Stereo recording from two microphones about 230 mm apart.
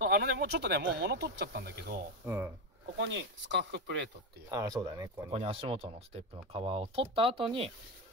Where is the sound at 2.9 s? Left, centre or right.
Right.